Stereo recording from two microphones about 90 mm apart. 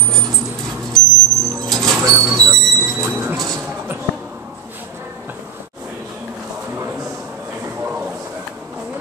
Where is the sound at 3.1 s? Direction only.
30° right (ahead or behind).